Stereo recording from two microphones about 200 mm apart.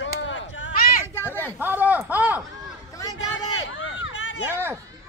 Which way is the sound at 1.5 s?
10° right (ahead or behind).